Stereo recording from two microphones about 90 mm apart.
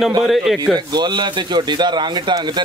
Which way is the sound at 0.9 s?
55° right (ahead or behind).